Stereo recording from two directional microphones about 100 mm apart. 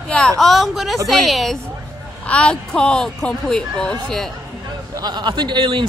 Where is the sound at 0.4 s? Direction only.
Centre (ahead or behind).